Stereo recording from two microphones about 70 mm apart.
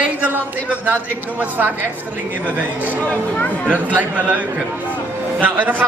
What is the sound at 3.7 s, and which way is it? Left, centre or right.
A man's voice, right.